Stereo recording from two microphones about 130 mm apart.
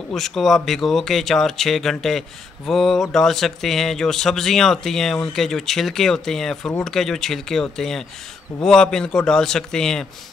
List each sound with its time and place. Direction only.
0.1 s speech: centre (ahead or behind)